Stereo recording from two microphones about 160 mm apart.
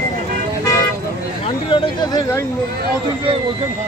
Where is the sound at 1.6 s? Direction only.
30° left (ahead or behind).